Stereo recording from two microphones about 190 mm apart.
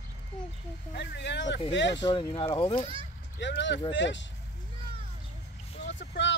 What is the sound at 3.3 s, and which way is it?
Speech, 70° left (ahead or behind).